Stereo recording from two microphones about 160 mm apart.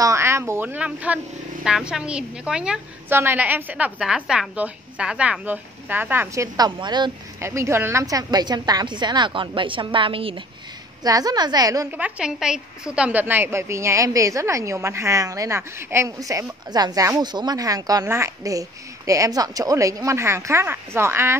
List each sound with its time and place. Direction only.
0.0 s a woman's voice: 15° right (ahead or behind)
7.3 s a woman's voice: 15° right (ahead or behind); by 10.4 s 35° right (ahead or behind)
11.1 s a woman's voice: 25° right (ahead or behind)
11.9 s a woman's voice: 5° right (ahead or behind)